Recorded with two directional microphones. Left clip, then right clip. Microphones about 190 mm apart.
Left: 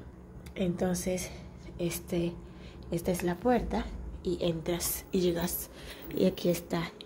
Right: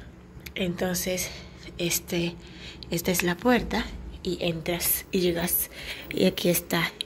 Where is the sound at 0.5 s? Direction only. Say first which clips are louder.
Right 3 dB; 5° left (ahead or behind).